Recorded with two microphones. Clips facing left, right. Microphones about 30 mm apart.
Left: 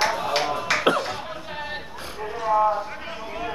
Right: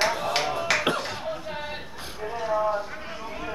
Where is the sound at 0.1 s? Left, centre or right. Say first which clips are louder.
Left 2 dB; centre.